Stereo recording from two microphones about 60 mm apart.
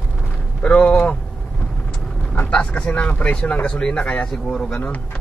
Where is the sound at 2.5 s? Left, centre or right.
Centre.